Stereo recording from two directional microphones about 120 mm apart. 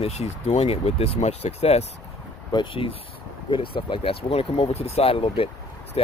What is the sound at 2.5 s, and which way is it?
Speech, 45° left (ahead or behind).